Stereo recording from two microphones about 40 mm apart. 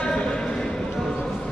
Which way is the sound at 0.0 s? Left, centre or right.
Centre.